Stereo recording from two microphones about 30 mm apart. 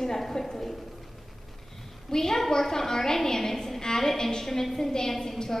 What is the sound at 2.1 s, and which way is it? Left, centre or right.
A woman's voice, centre.